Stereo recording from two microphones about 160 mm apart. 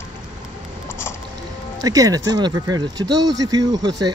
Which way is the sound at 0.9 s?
15° left (ahead or behind).